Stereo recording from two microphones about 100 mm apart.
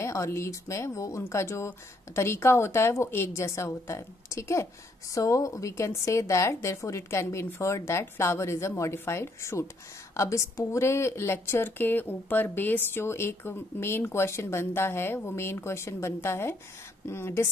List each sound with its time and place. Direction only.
0.0 s a woman's voice: 30° left (ahead or behind)